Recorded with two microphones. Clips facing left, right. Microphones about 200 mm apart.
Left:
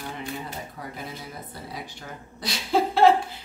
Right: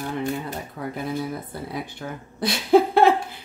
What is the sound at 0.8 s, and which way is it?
Speech, 65° right (ahead or behind).